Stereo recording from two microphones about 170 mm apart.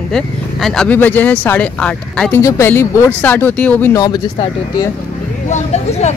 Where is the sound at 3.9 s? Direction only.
25° left (ahead or behind).